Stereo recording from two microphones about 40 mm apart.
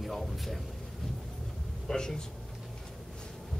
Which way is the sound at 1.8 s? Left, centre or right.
Centre.